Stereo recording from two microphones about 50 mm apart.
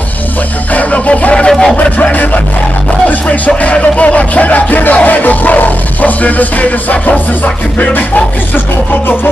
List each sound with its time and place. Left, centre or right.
0.7 s music: left
1.5 s music: centre
1.8 s music: left